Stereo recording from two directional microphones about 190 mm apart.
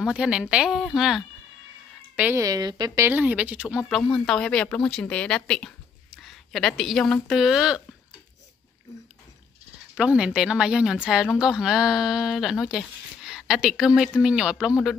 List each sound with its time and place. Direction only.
0.0 s a woman's voice: 5° right (ahead or behind); by 3.1 s 20° right (ahead or behind)
3.1 s speech: 10° right (ahead or behind)
9.9 s speech: 5° right (ahead or behind)